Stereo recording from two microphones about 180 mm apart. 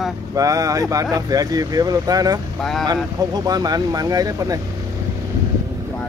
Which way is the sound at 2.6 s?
Centre (ahead or behind).